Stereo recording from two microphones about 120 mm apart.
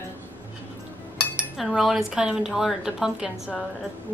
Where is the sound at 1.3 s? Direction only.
5° right (ahead or behind).